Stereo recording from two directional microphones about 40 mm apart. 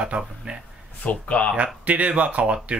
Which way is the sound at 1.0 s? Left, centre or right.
Left.